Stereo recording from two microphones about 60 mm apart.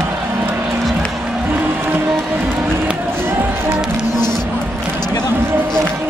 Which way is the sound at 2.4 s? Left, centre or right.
Right.